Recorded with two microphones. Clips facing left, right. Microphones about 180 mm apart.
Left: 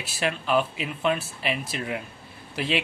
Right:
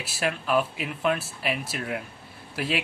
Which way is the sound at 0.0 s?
5° right (ahead or behind).